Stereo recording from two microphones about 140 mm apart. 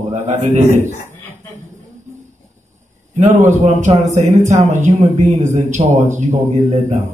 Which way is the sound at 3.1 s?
55° right (ahead or behind).